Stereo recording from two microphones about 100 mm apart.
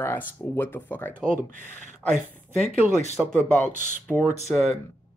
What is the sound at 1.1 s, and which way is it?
Speech, 20° right (ahead or behind).